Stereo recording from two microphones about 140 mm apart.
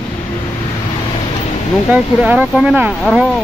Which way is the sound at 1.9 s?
10° right (ahead or behind).